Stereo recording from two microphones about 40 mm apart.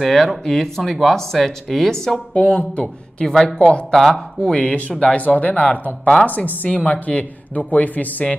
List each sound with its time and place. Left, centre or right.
0.0 s speech: centre
2.3 s speech: left
3.3 s speech: centre
3.5 s speech: left
3.9 s speech: centre
4.6 s speech: left